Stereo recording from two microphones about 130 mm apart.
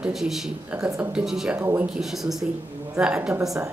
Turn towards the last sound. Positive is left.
turn(degrees=-25)  # may be behind; listen again after turning